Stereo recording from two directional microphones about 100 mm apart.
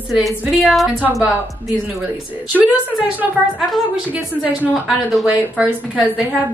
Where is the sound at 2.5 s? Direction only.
15° right (ahead or behind).